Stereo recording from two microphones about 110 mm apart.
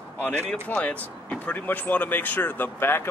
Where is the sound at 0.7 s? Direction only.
15° left (ahead or behind).